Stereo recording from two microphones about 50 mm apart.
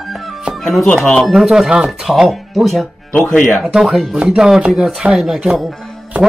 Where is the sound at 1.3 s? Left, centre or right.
Centre.